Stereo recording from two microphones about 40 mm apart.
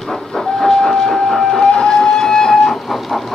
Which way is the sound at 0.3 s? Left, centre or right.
Centre.